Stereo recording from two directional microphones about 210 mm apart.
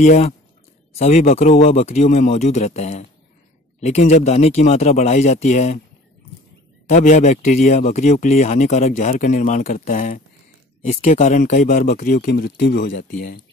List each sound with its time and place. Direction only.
0.0 s speech: 35° left (ahead or behind)
6.9 s speech: 35° left (ahead or behind); by 13.0 s 55° left (ahead or behind)